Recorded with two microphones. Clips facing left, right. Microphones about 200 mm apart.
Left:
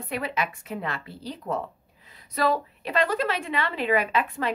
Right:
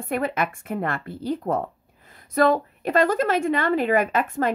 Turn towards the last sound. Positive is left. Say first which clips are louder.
# right 4 dB
turn(degrees=-45)  # may be behind; listen again after turning